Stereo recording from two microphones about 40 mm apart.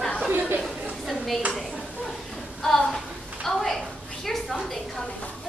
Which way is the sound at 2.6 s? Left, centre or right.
Centre.